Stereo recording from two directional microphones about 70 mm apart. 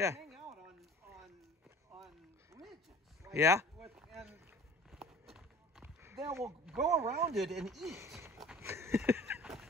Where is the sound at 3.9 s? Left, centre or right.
Centre.